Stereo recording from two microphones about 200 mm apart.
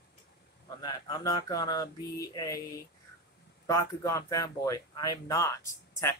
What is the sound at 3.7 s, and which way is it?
Speech, 15° left (ahead or behind).